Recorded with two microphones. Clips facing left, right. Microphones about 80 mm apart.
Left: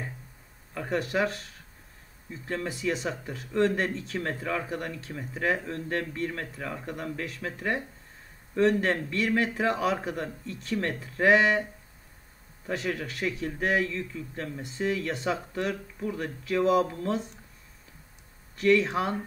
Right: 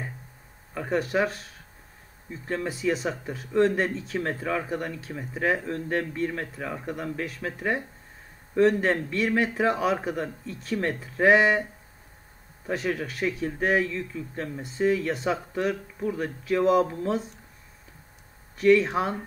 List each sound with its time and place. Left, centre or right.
0.7 s speech: centre
8.8 s speech: centre
12.6 s speech: centre
14.6 s speech: centre
16.8 s speech: centre
18.6 s speech: centre